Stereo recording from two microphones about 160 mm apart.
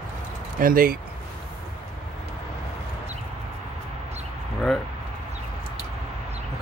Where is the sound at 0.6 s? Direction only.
65° right (ahead or behind).